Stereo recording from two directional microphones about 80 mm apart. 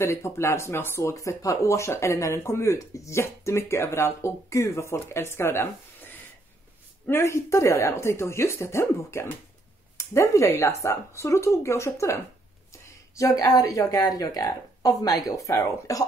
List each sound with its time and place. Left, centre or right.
0.0 s a woman's voice: left